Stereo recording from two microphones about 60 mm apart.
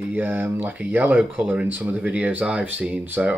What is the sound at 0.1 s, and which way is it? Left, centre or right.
Speech, right.